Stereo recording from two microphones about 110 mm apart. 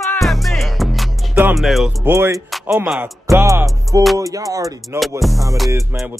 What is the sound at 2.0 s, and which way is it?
Speech, 20° right (ahead or behind).